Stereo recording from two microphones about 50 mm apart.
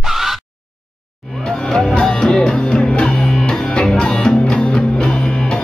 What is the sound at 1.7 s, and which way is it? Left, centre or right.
Music, centre.